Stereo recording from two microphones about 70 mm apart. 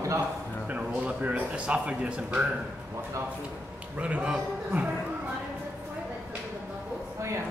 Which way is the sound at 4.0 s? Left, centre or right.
Centre.